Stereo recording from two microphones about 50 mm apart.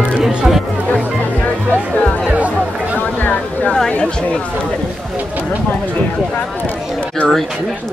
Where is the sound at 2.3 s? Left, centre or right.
Right.